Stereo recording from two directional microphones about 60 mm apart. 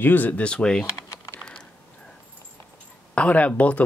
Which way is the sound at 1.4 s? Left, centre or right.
Left.